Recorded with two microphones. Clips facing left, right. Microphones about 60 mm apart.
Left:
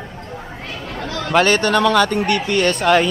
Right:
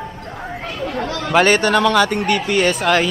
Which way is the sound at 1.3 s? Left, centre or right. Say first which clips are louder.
Right 1 dB; centre.